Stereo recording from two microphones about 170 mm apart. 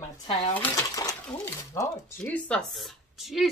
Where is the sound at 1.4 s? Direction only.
10° left (ahead or behind).